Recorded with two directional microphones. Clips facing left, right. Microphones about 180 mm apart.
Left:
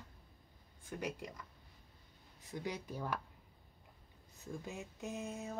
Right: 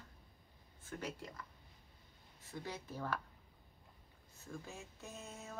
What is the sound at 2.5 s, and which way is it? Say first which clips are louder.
Speech: left 4 dB; 15° left (ahead or behind).